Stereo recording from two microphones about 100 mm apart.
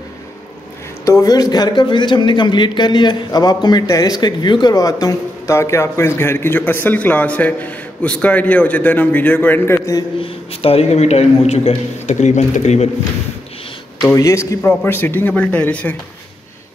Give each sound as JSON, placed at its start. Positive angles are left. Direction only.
{"t": 1.0, "sound": "a man's voice", "side_deg": 35}
{"t": 10.2, "sound": "speech", "side_deg": 70}
{"t": 14.1, "sound": "a man's voice", "side_deg": 30}
{"t": 14.6, "sound": "speech", "side_deg": 15}